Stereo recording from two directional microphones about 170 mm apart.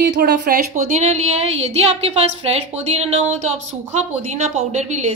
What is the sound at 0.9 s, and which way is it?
A woman's voice, 40° right (ahead or behind).